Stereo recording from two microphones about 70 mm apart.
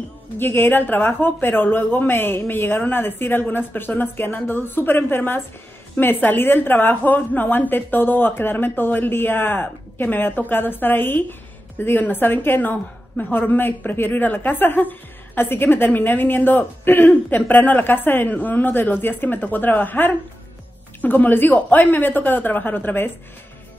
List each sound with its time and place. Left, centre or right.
0.4 s a woman's voice: left